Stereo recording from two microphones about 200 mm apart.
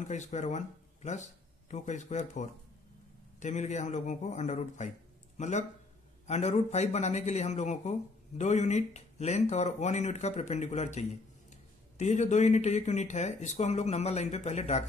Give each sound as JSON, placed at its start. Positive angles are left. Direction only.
{"t": 0.0, "sound": "speech", "side_deg": 35}